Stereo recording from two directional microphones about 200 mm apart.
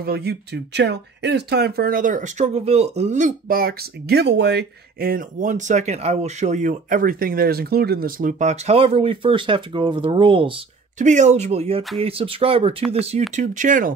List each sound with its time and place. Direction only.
0.0 s speech: 55° right (ahead or behind); by 10.5 s 25° right (ahead or behind)
11.0 s speech: 35° right (ahead or behind)
12.0 s a sound: 30° right (ahead or behind)
12.9 s speech: 30° right (ahead or behind)